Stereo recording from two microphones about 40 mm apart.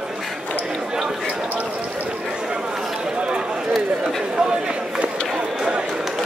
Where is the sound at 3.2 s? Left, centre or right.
Right.